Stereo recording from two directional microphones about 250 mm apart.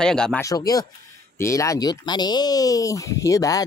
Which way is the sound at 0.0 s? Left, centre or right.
Centre.